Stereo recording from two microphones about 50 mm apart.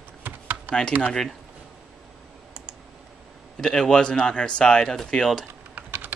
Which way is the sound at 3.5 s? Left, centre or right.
Centre.